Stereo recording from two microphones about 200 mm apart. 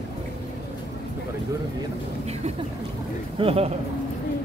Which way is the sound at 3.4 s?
30° right (ahead or behind).